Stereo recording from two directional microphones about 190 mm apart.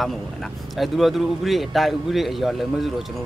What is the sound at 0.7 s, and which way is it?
A man's voice, centre (ahead or behind).